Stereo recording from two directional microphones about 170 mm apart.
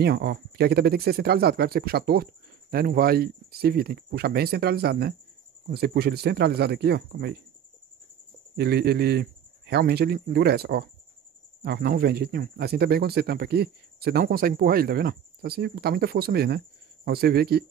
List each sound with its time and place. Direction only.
0.0 s a man's voice: 70° right (ahead or behind)
8.5 s a man's voice: 70° right (ahead or behind)